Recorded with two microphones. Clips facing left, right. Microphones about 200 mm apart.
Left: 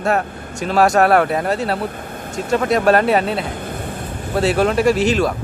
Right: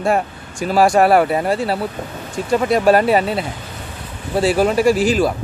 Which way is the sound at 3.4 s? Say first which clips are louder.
Left 4 dB; 55° left (ahead or behind).